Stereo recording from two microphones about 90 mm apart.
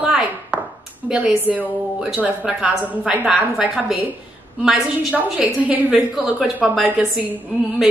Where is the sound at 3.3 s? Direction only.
10° right (ahead or behind).